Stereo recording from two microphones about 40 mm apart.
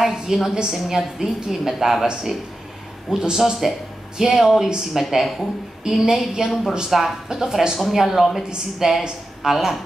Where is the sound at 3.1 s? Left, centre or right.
Centre.